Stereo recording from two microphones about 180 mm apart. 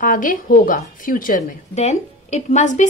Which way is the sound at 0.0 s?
50° left (ahead or behind).